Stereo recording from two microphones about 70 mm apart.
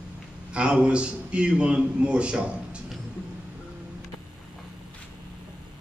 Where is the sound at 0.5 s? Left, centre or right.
Centre.